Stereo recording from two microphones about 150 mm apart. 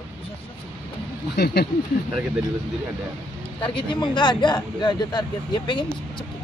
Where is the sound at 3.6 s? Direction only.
35° left (ahead or behind).